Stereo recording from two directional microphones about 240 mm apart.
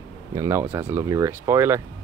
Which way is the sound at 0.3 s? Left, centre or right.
Centre.